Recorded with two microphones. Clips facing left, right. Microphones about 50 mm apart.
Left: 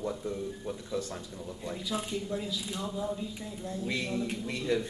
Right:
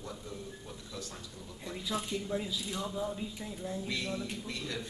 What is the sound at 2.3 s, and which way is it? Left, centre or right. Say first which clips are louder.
Speech: left 1 dB; centre.